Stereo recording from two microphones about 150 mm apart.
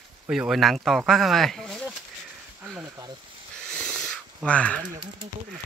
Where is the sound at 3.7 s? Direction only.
5° left (ahead or behind).